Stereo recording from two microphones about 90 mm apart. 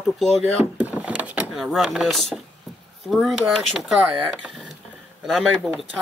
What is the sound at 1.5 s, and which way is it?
Speech, 5° right (ahead or behind).